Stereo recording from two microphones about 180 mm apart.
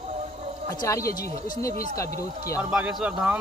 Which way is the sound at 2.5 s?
5° right (ahead or behind).